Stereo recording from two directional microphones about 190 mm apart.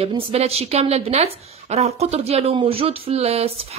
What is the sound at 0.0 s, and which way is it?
Speech, 30° right (ahead or behind).